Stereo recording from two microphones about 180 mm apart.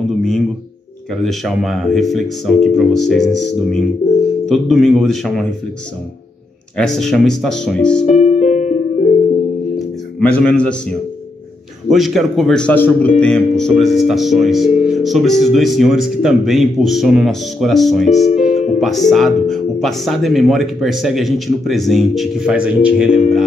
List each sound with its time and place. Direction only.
1.2 s speech: centre (ahead or behind)
6.8 s speech: centre (ahead or behind)
8.1 s music: 40° left (ahead or behind)
10.2 s a man's voice: 5° left (ahead or behind)
11.9 s speech: centre (ahead or behind)
18.2 s music: 40° left (ahead or behind)
18.8 s speech: centre (ahead or behind)